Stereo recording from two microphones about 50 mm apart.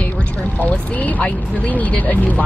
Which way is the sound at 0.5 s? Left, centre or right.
Left.